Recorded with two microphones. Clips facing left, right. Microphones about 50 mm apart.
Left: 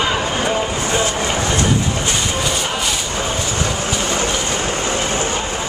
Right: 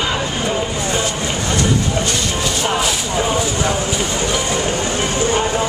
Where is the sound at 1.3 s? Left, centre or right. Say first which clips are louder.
Left 1 dB; left.